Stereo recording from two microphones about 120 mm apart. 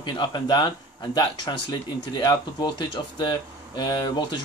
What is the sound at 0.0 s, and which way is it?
Speech, 35° left (ahead or behind).